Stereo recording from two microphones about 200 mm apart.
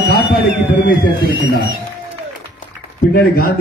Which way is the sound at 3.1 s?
45° left (ahead or behind).